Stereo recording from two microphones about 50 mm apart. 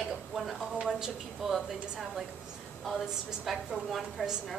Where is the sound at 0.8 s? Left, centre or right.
Centre.